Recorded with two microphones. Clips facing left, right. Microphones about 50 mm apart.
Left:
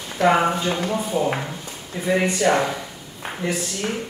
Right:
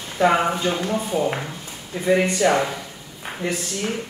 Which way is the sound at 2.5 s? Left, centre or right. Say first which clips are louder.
Left 1 dB; centre.